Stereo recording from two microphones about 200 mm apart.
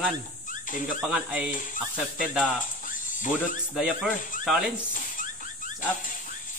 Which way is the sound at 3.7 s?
Centre (ahead or behind).